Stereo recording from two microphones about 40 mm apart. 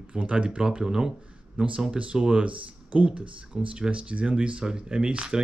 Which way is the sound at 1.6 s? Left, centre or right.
Right.